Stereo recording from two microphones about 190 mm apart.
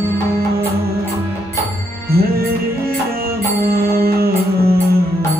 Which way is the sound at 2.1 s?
55° right (ahead or behind).